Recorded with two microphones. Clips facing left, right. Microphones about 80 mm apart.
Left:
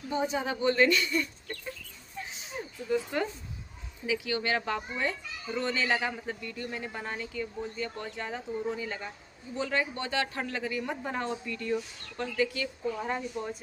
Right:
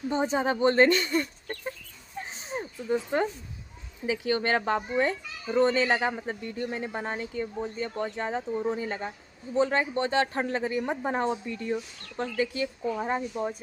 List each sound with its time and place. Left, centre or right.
0.1 s speech: right
2.1 s a sound: right
4.0 s a child's voice: right